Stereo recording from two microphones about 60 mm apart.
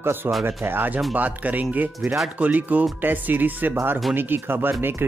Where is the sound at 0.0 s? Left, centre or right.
Right.